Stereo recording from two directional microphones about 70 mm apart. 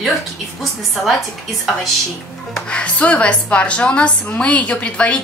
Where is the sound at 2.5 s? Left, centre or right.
Centre.